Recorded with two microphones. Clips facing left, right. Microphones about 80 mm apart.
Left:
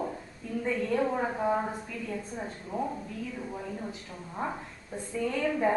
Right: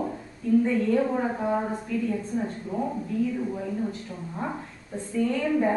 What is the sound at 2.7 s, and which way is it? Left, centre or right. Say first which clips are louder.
A woman's voice: right 5 dB; centre.